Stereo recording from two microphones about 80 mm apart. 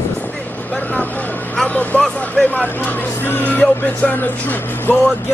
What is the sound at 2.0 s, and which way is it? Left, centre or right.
Speech, centre.